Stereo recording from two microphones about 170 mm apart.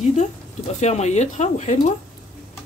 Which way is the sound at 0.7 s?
40° left (ahead or behind).